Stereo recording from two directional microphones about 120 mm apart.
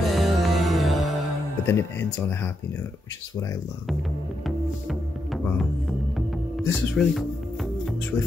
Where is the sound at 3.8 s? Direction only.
Centre (ahead or behind).